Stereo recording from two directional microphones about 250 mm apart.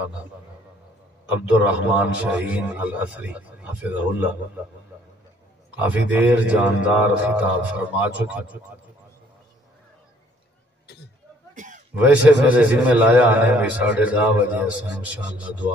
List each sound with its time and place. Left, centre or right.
1.5 s a man's voice: centre
5.8 s a man's voice: centre
11.5 s a sound: right
11.9 s a man's voice: centre